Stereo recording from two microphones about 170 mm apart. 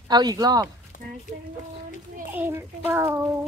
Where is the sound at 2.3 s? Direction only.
10° right (ahead or behind).